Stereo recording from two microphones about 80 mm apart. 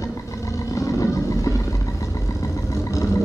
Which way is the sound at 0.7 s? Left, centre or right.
Left.